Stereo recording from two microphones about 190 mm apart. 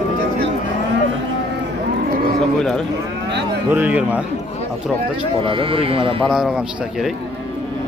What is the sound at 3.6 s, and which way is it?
Speech, 10° right (ahead or behind).